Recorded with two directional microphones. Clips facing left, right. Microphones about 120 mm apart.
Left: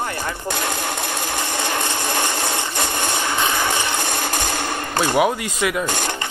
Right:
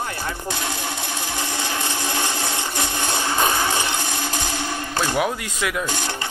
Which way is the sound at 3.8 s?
60° left (ahead or behind).